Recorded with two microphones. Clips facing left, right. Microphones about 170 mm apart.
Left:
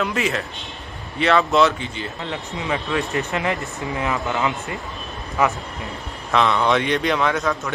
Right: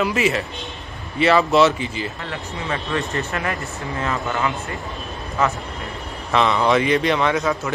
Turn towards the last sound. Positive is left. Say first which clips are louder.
# right 1 dB
turn(degrees=0)  # may be behind; listen again after turning